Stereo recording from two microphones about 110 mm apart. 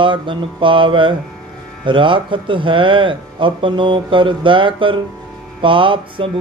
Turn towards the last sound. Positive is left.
turn(degrees=-50)  # may be behind; listen again after turning